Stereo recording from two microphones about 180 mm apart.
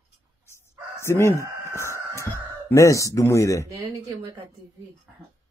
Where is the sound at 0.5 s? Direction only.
15° left (ahead or behind).